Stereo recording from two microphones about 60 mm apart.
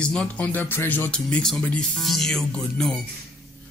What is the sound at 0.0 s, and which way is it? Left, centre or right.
Speech, centre.